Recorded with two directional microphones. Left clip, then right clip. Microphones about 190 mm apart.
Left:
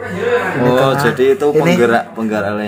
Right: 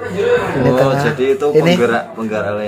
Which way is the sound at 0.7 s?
30° left (ahead or behind).